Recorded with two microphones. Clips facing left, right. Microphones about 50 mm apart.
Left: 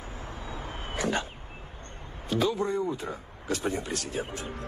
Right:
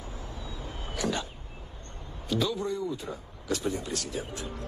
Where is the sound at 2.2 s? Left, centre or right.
Left.